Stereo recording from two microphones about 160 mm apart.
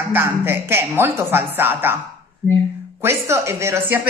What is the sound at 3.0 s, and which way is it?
A man's voice, 15° right (ahead or behind).